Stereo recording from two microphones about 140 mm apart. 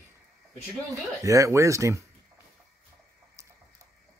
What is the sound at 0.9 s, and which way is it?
Speech, 20° right (ahead or behind).